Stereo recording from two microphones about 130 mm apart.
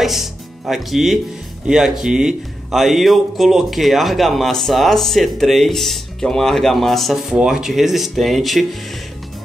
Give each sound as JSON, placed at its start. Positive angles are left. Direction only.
{"t": 0.0, "sound": "speech", "side_deg": 0}